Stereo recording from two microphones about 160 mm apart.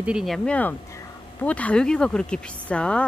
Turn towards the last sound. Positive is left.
turn(degrees=5)  # may be behind; listen again after turning